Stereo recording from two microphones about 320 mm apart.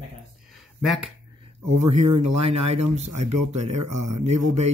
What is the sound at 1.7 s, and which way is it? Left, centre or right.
Speech, right.